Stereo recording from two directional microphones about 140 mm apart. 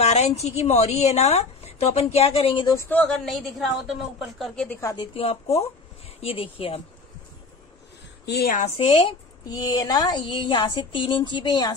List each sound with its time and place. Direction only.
0.0 s a woman's voice: 50° left (ahead or behind)
2.7 s a woman's voice: 15° left (ahead or behind)
4.7 s speech: 20° left (ahead or behind)
5.1 s a woman's voice: 45° left (ahead or behind)
8.4 s a woman's voice: 85° left
8.6 s a woman's voice: 45° left (ahead or behind)
9.5 s speech: 30° left (ahead or behind)